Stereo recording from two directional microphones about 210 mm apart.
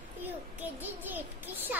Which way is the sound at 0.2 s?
10° right (ahead or behind).